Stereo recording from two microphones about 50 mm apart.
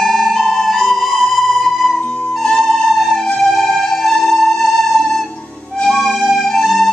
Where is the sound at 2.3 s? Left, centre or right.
Centre.